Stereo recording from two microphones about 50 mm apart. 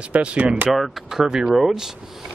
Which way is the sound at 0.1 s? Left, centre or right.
Right.